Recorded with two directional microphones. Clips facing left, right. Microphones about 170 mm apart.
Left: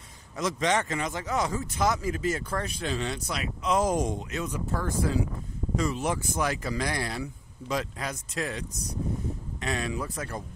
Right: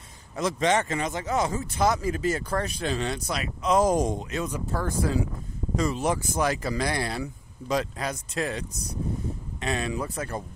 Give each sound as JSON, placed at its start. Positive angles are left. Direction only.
{"t": 0.4, "sound": "speech", "side_deg": -30}